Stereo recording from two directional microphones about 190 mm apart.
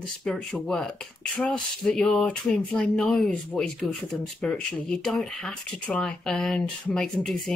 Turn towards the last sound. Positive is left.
turn(degrees=5)  # may be behind; listen again after turning